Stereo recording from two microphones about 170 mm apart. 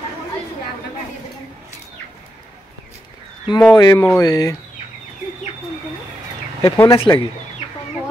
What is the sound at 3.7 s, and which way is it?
Speech, 25° left (ahead or behind).